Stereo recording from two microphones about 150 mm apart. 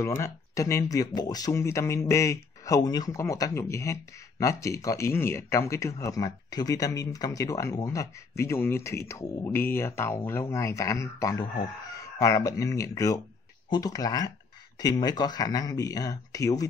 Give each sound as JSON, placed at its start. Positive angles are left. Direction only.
{"t": 0.0, "sound": "speech", "side_deg": 20}